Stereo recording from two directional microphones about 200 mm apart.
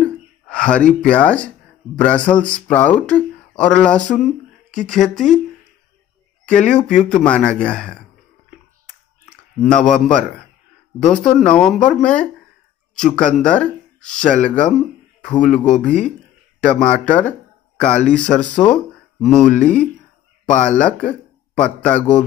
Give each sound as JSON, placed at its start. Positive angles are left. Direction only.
{"t": 0.0, "sound": "a sound", "side_deg": 5}
{"t": 2.0, "sound": "speech", "side_deg": 5}
{"t": 6.4, "sound": "speech", "side_deg": 5}
{"t": 9.6, "sound": "speech", "side_deg": 0}
{"t": 15.8, "sound": "a man's voice", "side_deg": 5}